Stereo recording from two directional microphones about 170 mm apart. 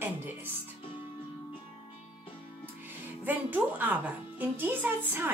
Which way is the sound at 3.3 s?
10° right (ahead or behind).